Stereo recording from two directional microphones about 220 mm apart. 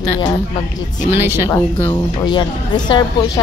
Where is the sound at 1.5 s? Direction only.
15° left (ahead or behind).